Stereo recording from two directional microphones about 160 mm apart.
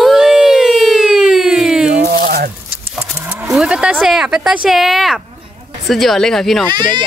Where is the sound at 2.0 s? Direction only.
60° right (ahead or behind).